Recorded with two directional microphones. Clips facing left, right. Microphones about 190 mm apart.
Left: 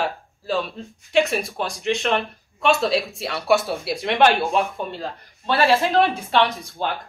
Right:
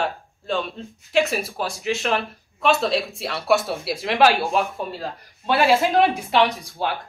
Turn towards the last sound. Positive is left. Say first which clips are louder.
# right 1 dB
turn(degrees=-10)  # may be behind; listen again after turning